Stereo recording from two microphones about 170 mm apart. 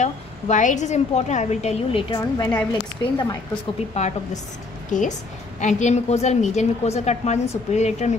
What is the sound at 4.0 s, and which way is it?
A woman's voice, 40° left (ahead or behind).